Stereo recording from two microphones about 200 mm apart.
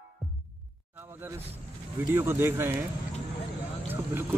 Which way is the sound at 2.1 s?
10° right (ahead or behind).